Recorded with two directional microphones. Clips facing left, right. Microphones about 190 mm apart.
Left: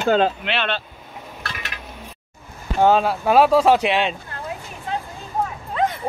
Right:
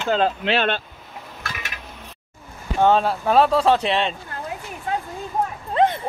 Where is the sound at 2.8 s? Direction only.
5° left (ahead or behind).